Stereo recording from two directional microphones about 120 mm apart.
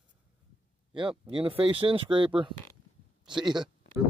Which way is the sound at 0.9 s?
45° right (ahead or behind).